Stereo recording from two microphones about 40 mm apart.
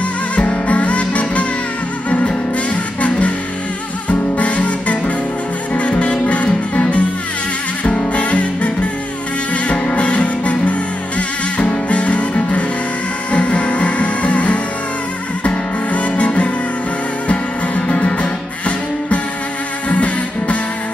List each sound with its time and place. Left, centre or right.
0.4 s music: left
19.9 s music: left